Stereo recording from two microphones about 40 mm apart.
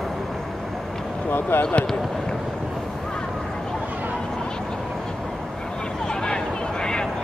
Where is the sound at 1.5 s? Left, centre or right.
Left.